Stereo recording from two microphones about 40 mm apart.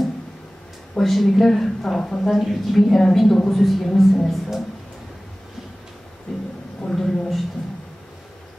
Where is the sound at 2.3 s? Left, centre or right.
Centre.